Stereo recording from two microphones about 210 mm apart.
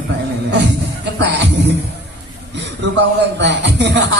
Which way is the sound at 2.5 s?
55° right (ahead or behind).